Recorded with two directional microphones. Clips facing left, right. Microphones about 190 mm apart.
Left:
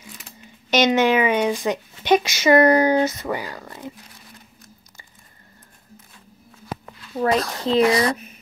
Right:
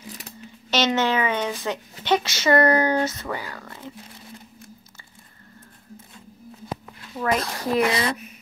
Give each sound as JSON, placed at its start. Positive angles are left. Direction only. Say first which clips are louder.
{"t": 0.7, "sound": "speech", "louder": "left 5 dB", "side_deg": 15}
{"t": 7.2, "sound": "speech", "louder": "left 4 dB", "side_deg": 30}